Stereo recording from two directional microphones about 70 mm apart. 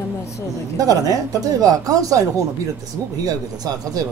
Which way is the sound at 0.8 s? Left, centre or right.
Right.